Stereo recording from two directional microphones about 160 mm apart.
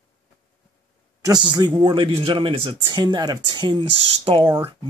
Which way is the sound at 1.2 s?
25° right (ahead or behind).